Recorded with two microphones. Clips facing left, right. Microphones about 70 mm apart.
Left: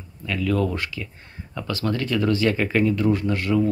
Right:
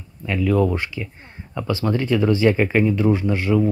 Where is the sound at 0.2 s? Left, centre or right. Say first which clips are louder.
Right 4 dB; right.